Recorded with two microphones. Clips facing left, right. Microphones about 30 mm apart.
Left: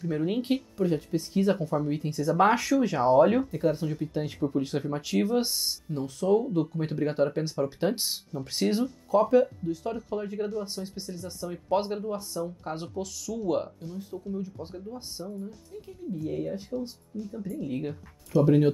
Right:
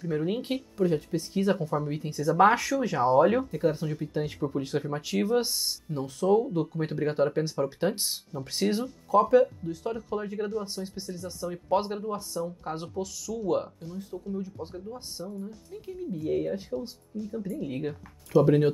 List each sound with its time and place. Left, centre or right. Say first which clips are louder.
0.0 s speech: left 1 dB; centre
16.1 s speech: right 2 dB; centre
16.7 s speech: even; centre
17.5 s speech: left 2 dB; centre